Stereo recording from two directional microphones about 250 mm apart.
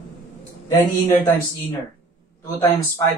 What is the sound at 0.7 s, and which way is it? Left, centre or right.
Speech, centre.